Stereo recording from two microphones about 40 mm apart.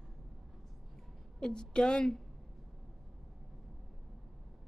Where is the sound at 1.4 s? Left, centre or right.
Centre.